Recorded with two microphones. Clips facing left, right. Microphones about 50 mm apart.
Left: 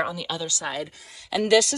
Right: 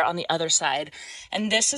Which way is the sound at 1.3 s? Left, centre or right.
Right.